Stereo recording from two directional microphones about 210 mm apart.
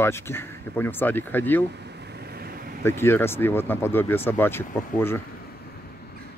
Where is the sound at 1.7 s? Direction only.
55° right (ahead or behind).